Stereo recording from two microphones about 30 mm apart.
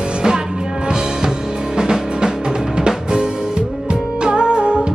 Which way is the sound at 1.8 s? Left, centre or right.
Right.